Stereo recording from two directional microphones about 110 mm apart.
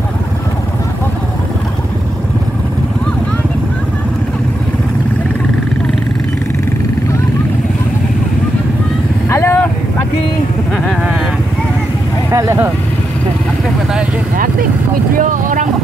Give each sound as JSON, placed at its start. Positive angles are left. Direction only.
{"t": 9.3, "sound": "vehicle", "side_deg": 20}
{"t": 12.3, "sound": "vehicle", "side_deg": -25}